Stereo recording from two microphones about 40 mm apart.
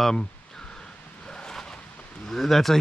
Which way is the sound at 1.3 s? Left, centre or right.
Centre.